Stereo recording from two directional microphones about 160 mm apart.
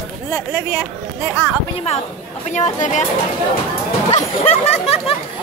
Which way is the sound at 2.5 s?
50° left (ahead or behind).